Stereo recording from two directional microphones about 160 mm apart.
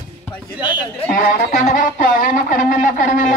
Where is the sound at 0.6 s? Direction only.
30° left (ahead or behind).